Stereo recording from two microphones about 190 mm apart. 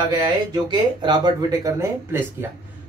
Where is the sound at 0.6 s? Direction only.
25° right (ahead or behind).